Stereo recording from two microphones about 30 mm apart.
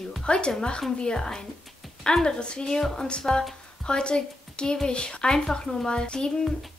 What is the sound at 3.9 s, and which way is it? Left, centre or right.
A woman's voice, left.